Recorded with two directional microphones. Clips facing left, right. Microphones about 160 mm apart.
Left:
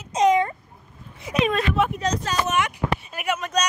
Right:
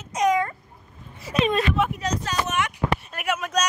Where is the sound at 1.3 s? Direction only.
10° left (ahead or behind).